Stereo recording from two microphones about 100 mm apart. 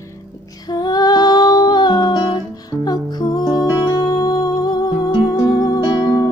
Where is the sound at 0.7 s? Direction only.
45° left (ahead or behind).